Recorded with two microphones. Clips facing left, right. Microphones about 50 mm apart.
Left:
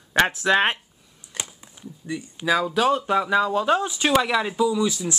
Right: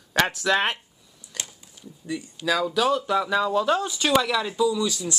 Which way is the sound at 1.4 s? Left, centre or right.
Left.